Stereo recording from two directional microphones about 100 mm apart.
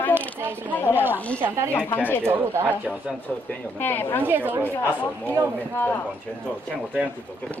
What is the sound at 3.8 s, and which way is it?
Speech, 20° left (ahead or behind).